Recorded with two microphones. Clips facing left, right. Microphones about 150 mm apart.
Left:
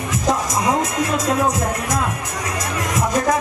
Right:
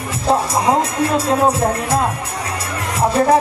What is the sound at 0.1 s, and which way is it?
Speech, 30° right (ahead or behind).